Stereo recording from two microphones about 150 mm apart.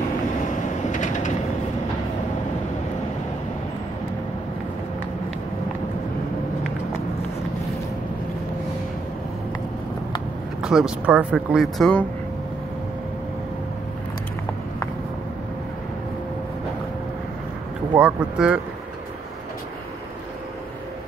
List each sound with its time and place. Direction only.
0.9 s a sound: 55° left (ahead or behind)
10.6 s speech: 5° right (ahead or behind)
17.9 s speech: 10° right (ahead or behind)